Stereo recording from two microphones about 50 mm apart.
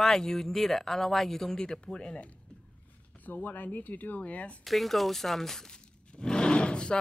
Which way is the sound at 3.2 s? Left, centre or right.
Left.